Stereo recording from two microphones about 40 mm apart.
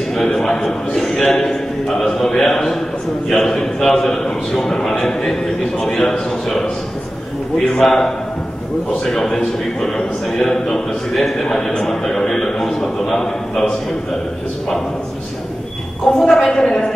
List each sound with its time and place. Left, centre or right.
0.2 s a man's voice: centre
7.8 s a man's voice: centre
11.1 s a man's voice: centre
11.4 s a man's voice: centre
16.2 s a man's voice: centre